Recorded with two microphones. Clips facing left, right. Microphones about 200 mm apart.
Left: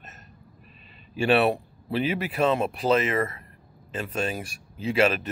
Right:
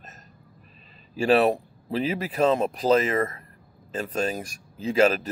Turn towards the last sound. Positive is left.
turn(degrees=-35)  # may be behind; listen again after turning